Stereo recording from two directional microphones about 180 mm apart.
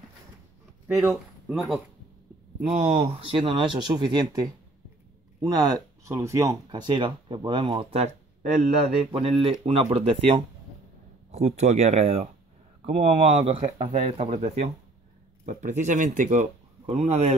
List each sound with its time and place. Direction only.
0.9 s speech: centre (ahead or behind)
3.0 s speech: 30° right (ahead or behind)